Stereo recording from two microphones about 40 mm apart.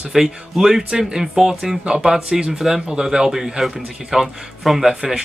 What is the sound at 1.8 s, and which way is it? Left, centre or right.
Speech, right.